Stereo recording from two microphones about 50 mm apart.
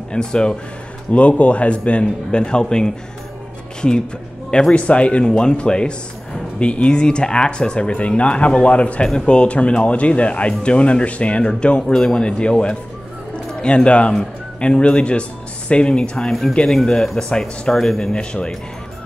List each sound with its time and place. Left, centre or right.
0.1 s speech: centre
4.5 s speech: centre
11.9 s speech: centre
18.1 s speech: centre